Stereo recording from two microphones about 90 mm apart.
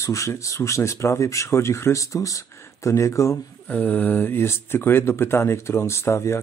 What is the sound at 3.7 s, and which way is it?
Speech, 15° left (ahead or behind).